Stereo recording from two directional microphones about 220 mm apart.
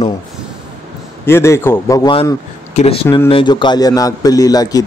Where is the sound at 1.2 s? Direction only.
10° left (ahead or behind).